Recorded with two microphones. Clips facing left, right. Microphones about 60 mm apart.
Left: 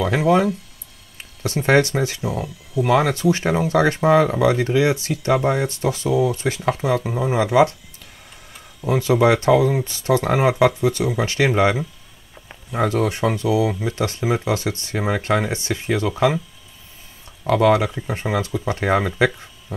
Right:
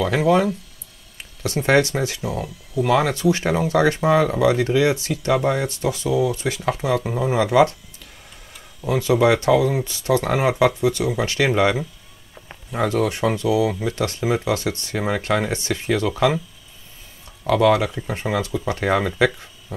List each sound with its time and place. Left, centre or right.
0.0 s speech: left
5.7 s speech: left
7.1 s speech: centre
8.8 s speech: left
12.7 s speech: left
15.0 s speech: centre
17.5 s speech: left